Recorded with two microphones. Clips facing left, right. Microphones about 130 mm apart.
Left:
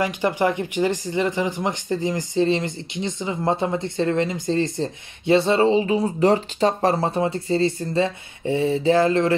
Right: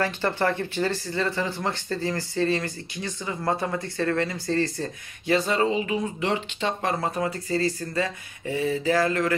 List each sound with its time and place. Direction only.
0.0 s speech: 15° left (ahead or behind)